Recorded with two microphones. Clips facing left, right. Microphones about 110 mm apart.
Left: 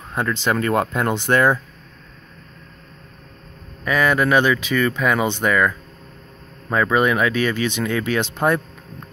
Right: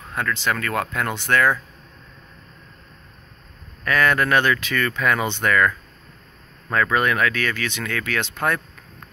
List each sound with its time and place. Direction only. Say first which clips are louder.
0.1 s speech: left 3 dB; 25° left (ahead or behind)
3.8 s speech: left 2 dB; 10° left (ahead or behind)